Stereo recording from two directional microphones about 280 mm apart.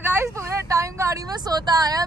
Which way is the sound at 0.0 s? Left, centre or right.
Centre.